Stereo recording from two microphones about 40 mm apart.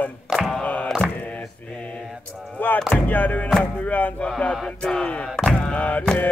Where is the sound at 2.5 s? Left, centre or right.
Left.